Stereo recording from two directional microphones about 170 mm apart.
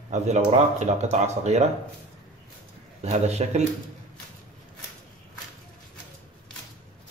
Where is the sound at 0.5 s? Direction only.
40° right (ahead or behind).